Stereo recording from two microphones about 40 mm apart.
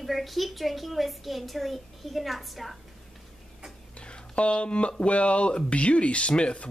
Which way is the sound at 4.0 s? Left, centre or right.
Left.